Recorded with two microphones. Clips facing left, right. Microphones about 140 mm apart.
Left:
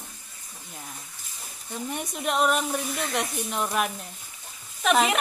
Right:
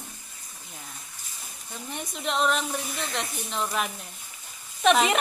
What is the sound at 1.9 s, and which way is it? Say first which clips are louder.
A woman's voice: left 2 dB; 10° left (ahead or behind).